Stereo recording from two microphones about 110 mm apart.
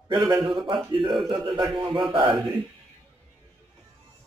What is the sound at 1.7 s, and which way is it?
Speech, 50° right (ahead or behind).